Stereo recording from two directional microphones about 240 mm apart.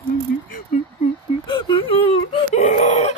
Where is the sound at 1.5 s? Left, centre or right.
Left.